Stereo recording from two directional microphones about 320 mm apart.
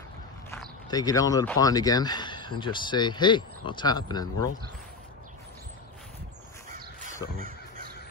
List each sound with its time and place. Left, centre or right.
0.5 s speech: centre
7.3 s crow: right